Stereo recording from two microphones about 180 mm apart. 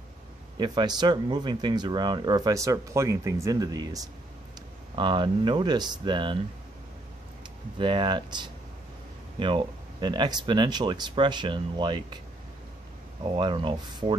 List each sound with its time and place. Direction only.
0.6 s speech: 25° right (ahead or behind)
7.7 s speech: 25° right (ahead or behind)
13.2 s speech: 25° right (ahead or behind)